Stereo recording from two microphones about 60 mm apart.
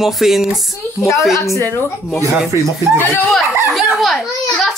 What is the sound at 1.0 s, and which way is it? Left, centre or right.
Speech, left.